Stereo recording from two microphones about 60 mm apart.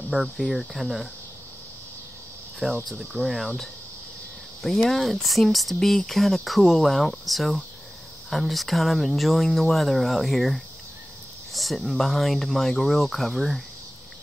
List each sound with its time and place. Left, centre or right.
0.1 s cricket: centre
0.5 s speech: centre
2.6 s speech: centre
4.6 s speech: centre